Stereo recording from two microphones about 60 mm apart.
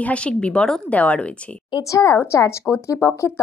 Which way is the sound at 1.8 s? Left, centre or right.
Left.